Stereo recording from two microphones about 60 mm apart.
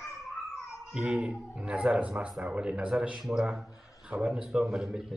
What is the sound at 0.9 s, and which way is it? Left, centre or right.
A man's voice, centre.